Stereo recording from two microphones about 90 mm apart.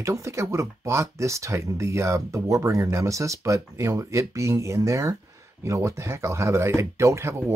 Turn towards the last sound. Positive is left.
turn(degrees=-30)  # may be behind; listen again after turning